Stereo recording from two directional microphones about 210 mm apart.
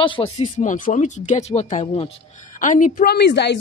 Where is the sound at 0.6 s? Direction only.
40° left (ahead or behind).